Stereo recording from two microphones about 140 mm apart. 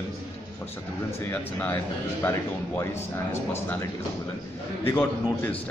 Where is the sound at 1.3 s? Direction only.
10° left (ahead or behind).